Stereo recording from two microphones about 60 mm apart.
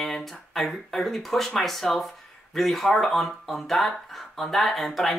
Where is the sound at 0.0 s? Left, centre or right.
Centre.